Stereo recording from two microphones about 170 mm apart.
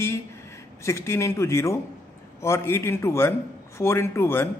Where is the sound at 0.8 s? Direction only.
15° left (ahead or behind).